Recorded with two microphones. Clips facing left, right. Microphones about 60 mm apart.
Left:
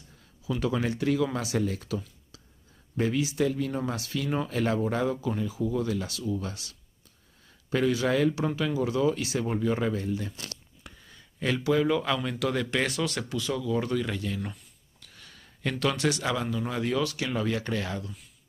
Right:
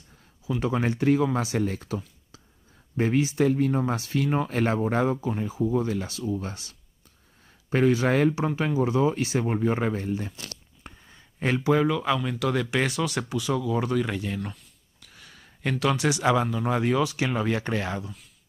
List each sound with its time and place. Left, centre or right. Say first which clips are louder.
0.5 s speech: right 2 dB; right
3.0 s speech: right 3 dB; right
11.1 s a sound: right 2 dB; right
11.9 s speech: right 1 dB; centre; by 14.4 s right
15.8 s speech: right 2 dB; centre
16.5 s speech: right 4 dB; right